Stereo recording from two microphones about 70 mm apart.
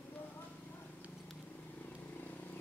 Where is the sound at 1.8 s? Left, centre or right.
Left.